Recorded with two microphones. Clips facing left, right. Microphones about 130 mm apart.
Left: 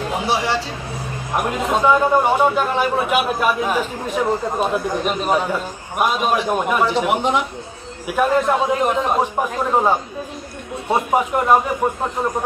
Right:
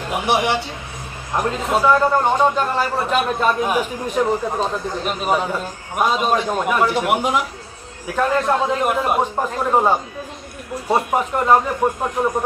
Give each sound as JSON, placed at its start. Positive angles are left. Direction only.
{"t": 0.1, "sound": "a man's voice", "side_deg": -20}
{"t": 1.3, "sound": "a man's voice", "side_deg": 15}
{"t": 3.6, "sound": "a man's voice", "side_deg": -10}
{"t": 4.6, "sound": "a man's voice", "side_deg": 10}
{"t": 5.2, "sound": "a man's voice", "side_deg": 0}
{"t": 6.9, "sound": "a man's voice", "side_deg": -5}
{"t": 8.1, "sound": "a man's voice", "side_deg": 15}
{"t": 8.8, "sound": "a man's voice", "side_deg": -5}